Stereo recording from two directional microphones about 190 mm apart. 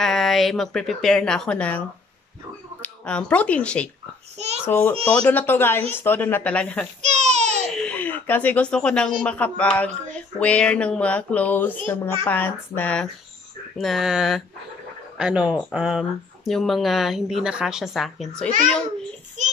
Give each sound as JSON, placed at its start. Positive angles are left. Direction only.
{"t": 0.0, "sound": "speech", "side_deg": 0}
{"t": 2.8, "sound": "speech", "side_deg": 5}
{"t": 7.0, "sound": "baby cry", "side_deg": -35}
{"t": 7.8, "sound": "speech", "side_deg": 10}